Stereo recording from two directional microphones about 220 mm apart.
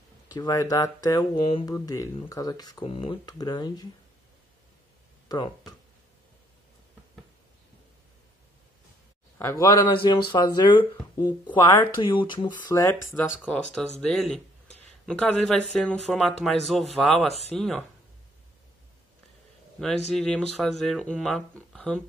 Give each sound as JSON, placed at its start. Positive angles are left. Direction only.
{"t": 0.3, "sound": "speech", "side_deg": 15}
{"t": 5.3, "sound": "speech", "side_deg": 15}
{"t": 9.4, "sound": "speech", "side_deg": 15}
{"t": 20.1, "sound": "speech", "side_deg": 5}